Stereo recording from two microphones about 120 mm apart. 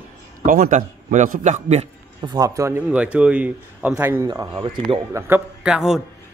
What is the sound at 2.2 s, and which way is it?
Speech, 30° right (ahead or behind).